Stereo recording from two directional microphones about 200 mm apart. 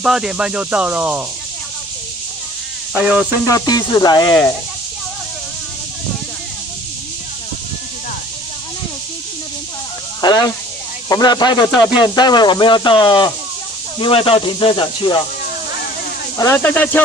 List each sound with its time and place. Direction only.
0.0 s speech: 5° right (ahead or behind)
2.9 s speech: 5° right (ahead or behind)
3.4 s speech: 15° left (ahead or behind)
10.2 s speech: 20° left (ahead or behind)
16.3 s speech: 10° left (ahead or behind)